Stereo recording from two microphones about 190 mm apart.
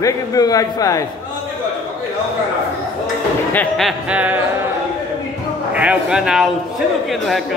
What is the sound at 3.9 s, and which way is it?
Speech, 5° right (ahead or behind).